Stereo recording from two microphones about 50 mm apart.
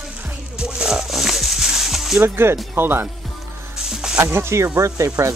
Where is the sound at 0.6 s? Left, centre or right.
Centre.